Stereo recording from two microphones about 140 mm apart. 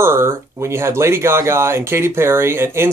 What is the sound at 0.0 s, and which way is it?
Speech, 20° right (ahead or behind).